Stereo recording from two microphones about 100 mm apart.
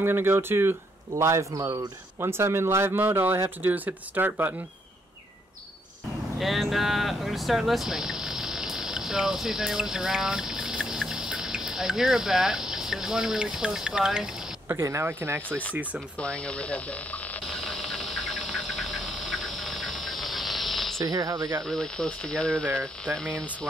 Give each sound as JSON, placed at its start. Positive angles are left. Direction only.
{"t": 0.0, "sound": "a man's voice", "side_deg": -20}
{"t": 2.1, "sound": "speech", "side_deg": -25}
{"t": 6.4, "sound": "speech", "side_deg": 0}
{"t": 14.7, "sound": "speech", "side_deg": -25}
{"t": 16.2, "sound": "speech", "side_deg": 10}
{"t": 17.5, "sound": "a sound", "side_deg": 0}
{"t": 21.0, "sound": "a man's voice", "side_deg": -40}
{"t": 21.6, "sound": "speech", "side_deg": 5}